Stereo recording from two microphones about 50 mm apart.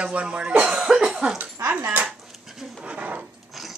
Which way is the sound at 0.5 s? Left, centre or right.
Centre.